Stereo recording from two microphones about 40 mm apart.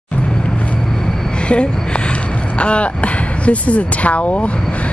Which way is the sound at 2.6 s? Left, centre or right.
Left.